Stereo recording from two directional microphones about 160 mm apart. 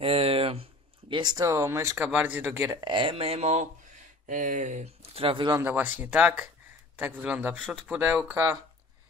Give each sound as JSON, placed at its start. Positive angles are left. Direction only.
{"t": 0.0, "sound": "speech", "side_deg": -35}
{"t": 2.8, "sound": "speech", "side_deg": -30}
{"t": 4.3, "sound": "speech", "side_deg": -55}
{"t": 5.6, "sound": "speech", "side_deg": -10}